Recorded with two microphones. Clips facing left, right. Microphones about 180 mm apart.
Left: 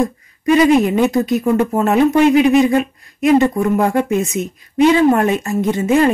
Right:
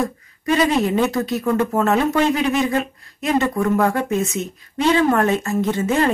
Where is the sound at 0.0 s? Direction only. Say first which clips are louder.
Left 6 dB; 15° left (ahead or behind).